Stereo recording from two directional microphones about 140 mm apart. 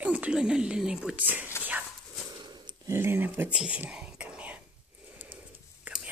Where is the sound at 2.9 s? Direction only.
15° right (ahead or behind).